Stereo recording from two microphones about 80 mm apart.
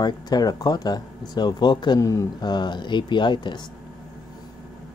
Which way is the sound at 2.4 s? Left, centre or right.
Left.